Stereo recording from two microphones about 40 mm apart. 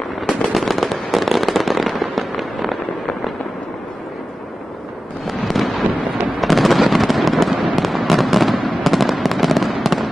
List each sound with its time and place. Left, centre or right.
0.5 s fireworks: centre
5.2 s fireworks: centre